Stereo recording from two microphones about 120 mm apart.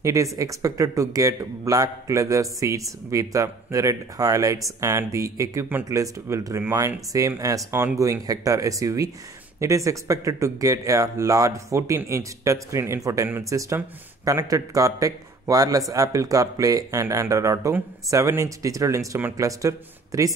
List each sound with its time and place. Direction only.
0.0 s a man's voice: 25° right (ahead or behind)